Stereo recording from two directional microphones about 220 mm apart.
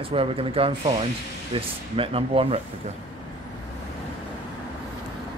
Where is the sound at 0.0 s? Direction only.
25° right (ahead or behind).